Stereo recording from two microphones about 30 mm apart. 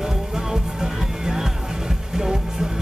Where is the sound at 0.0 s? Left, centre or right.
Centre.